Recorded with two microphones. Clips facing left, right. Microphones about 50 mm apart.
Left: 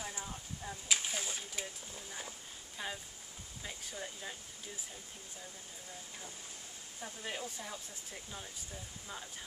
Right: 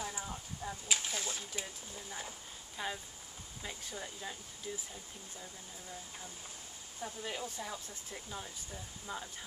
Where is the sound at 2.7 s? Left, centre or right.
Centre.